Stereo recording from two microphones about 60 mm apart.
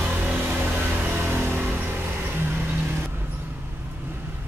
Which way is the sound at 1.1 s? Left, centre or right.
Right.